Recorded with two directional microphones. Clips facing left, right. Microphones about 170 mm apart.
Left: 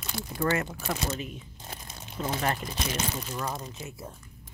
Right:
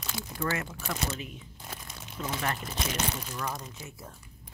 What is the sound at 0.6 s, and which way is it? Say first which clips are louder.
Speech: left 2 dB; 30° left (ahead or behind).